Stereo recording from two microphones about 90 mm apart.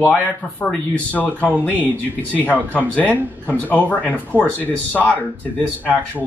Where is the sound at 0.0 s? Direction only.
20° left (ahead or behind).